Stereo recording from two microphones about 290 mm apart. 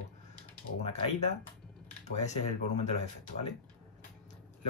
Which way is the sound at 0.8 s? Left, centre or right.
Left.